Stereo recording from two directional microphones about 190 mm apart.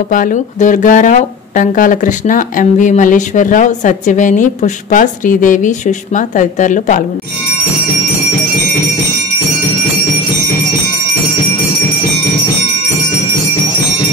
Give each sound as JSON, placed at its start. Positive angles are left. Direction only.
{"t": 0.1, "sound": "speech", "side_deg": 45}